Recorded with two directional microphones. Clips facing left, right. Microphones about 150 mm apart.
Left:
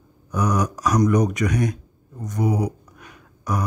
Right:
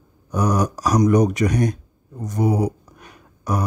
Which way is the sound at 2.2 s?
30° right (ahead or behind).